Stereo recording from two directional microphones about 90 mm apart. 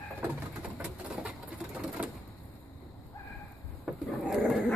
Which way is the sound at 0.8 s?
10° right (ahead or behind).